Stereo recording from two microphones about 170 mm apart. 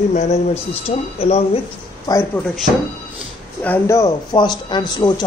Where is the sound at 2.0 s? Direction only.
15° left (ahead or behind).